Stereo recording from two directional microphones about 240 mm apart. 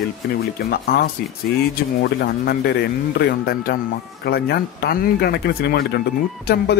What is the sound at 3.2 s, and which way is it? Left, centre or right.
Speech, left.